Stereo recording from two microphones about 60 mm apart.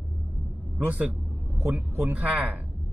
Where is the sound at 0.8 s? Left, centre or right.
Right.